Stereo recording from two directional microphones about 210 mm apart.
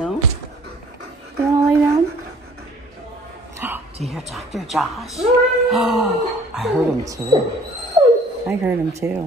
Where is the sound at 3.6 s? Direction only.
10° right (ahead or behind).